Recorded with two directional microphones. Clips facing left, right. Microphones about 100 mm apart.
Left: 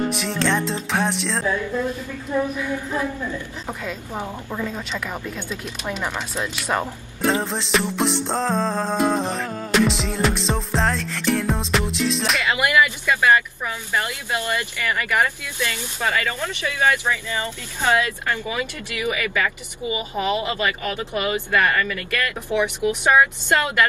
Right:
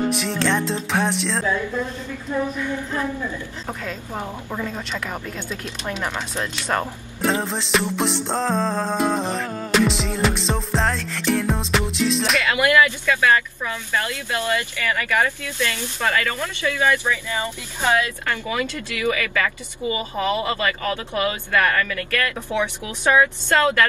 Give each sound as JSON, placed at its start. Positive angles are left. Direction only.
{"t": 0.1, "sound": "speech", "side_deg": 0}
{"t": 2.6, "sound": "speech", "side_deg": 10}
{"t": 12.4, "sound": "speech", "side_deg": 15}
{"t": 17.3, "sound": "speech", "side_deg": -20}
{"t": 17.9, "sound": "speech", "side_deg": 15}